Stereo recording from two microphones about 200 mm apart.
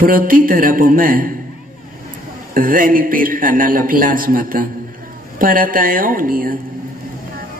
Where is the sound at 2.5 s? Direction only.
45° right (ahead or behind).